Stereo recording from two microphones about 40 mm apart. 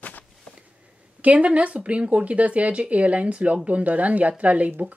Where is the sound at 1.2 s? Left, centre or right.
Right.